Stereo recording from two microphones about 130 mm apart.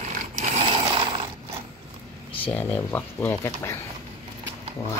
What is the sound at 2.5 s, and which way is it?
Speech, 15° left (ahead or behind).